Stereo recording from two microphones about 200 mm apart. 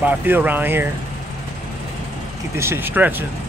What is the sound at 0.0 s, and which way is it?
Speech, 10° right (ahead or behind).